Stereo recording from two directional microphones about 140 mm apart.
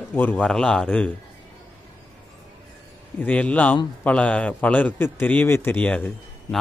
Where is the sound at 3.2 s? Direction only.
10° left (ahead or behind).